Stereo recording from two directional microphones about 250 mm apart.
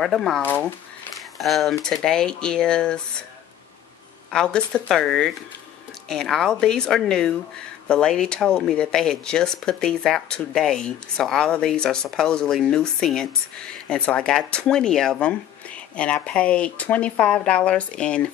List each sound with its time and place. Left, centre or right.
0.0 s speech: centre
4.3 s speech: centre